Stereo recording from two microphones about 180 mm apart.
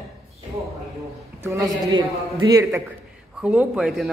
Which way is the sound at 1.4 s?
15° right (ahead or behind).